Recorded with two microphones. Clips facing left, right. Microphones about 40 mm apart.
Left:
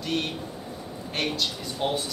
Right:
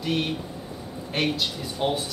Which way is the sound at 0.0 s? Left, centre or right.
Centre.